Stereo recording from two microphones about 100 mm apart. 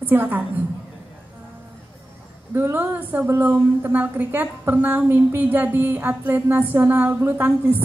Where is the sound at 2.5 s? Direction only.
20° right (ahead or behind).